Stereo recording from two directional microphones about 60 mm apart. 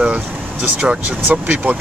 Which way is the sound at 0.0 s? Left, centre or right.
Right.